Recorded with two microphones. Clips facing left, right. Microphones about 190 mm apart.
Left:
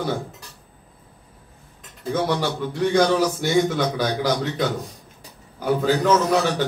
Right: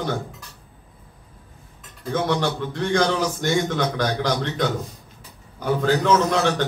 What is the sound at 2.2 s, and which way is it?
A man's voice, 10° left (ahead or behind).